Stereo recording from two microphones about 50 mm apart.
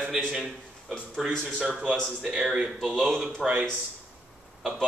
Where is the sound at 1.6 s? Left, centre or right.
Right.